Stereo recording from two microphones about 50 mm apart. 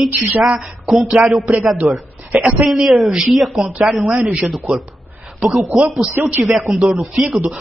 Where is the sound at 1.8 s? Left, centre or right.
Right.